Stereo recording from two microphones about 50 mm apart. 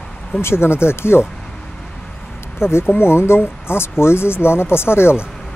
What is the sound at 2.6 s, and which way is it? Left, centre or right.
Speech, left.